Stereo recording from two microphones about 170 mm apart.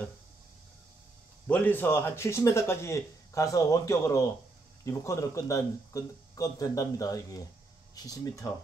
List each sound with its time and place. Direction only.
1.5 s a man's voice: 10° left (ahead or behind)